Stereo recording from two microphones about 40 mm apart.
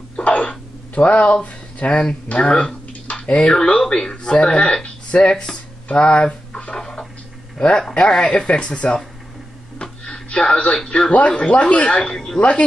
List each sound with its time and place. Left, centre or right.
0.2 s throat clearing: left
2.2 s speech: left
2.9 s a sound: left
4.1 s speech: left
5.9 s a sound: left
7.6 s speech: left
9.8 s a sound: left
10.9 s speech: left
12.0 s a woman's voice: centre
12.4 s speech: left